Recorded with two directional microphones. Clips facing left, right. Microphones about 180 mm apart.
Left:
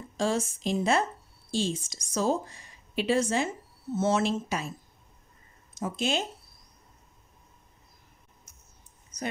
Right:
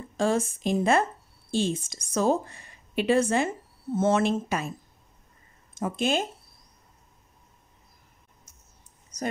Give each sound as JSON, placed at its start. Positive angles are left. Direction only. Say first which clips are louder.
{"t": 0.2, "sound": "a woman's voice", "louder": "right 3 dB", "side_deg": -55}
{"t": 5.8, "sound": "a woman's voice", "louder": "right 3 dB", "side_deg": -55}
{"t": 9.1, "sound": "a sound", "louder": "right 3 dB", "side_deg": -85}